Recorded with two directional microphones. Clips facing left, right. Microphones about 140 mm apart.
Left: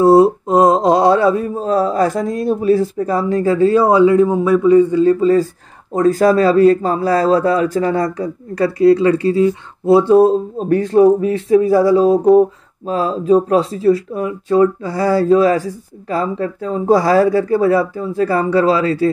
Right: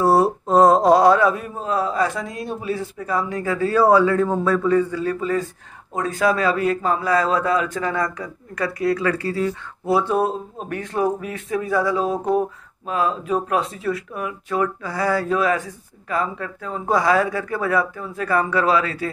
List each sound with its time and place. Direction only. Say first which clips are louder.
0.0 s mantra: left 7 dB; 20° left (ahead or behind)
5.9 s speech: left 9 dB; 40° left (ahead or behind)